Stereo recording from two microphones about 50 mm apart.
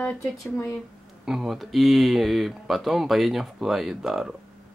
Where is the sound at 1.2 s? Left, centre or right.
Centre.